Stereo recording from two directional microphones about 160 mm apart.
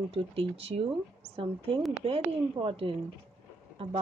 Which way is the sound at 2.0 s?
35° right (ahead or behind).